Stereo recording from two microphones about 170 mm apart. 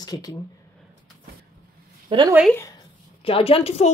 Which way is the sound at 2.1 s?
30° right (ahead or behind).